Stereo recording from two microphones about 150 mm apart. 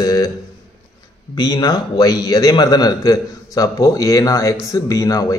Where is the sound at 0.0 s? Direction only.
25° left (ahead or behind).